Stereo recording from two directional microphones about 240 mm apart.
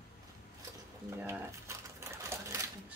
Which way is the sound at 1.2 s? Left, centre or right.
Centre.